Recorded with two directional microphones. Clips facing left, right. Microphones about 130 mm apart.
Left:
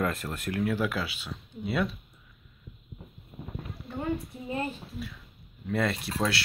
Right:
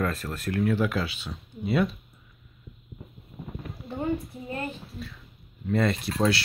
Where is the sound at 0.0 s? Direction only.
20° left (ahead or behind).